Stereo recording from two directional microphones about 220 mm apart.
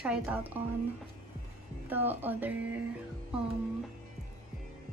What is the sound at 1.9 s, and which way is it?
Speech, 10° right (ahead or behind).